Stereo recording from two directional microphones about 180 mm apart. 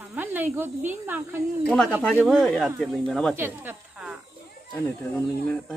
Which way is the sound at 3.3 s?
10° right (ahead or behind).